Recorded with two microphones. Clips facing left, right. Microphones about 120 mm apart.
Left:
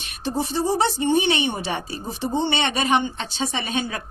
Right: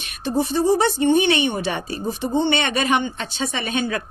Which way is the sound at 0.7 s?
30° left (ahead or behind).